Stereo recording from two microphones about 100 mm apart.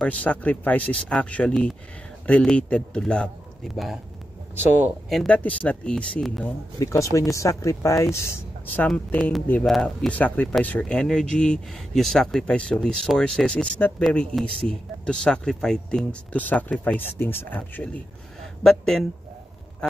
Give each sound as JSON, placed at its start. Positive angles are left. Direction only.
{"t": 0.0, "sound": "speech", "side_deg": 15}
{"t": 4.6, "sound": "speech", "side_deg": -20}
{"t": 5.1, "sound": "speech", "side_deg": 10}
{"t": 6.8, "sound": "speech", "side_deg": 30}
{"t": 8.8, "sound": "speech", "side_deg": 10}
{"t": 18.4, "sound": "speech", "side_deg": 5}